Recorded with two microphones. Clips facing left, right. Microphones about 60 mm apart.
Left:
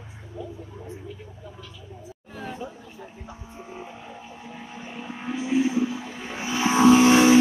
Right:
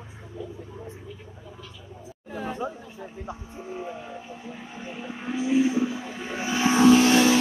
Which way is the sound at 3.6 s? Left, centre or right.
Centre.